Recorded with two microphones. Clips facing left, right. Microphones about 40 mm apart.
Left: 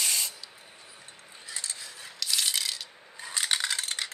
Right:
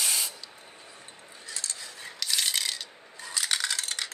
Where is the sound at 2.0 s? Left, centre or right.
Centre.